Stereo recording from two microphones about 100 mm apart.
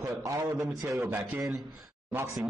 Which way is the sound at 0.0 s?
35° right (ahead or behind).